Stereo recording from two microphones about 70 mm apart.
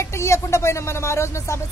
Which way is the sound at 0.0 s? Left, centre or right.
Left.